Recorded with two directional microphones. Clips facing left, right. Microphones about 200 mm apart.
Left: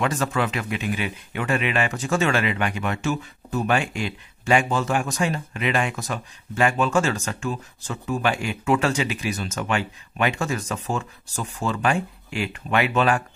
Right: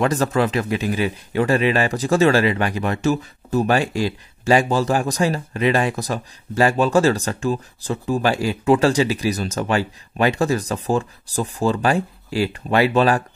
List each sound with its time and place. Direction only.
0.0 s speech: 40° right (ahead or behind)